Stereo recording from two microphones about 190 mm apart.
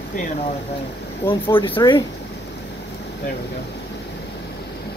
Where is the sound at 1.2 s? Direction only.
10° left (ahead or behind).